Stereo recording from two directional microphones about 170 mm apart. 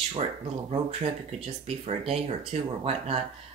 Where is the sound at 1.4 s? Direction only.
40° right (ahead or behind).